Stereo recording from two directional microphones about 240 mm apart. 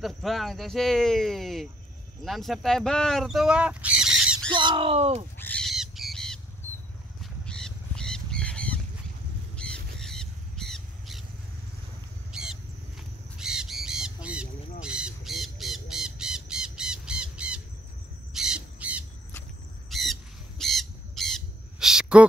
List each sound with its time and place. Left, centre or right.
0.0 s speech: centre
4.5 s speech: centre
5.4 s bird: centre
7.2 s squawk: centre
9.6 s crow: centre
12.3 s a sound: centre
13.4 s bird: centre
18.3 s crow: centre
19.9 s squawk: centre